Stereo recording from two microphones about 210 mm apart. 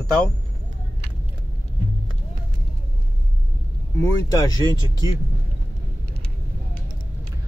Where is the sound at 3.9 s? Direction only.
15° left (ahead or behind).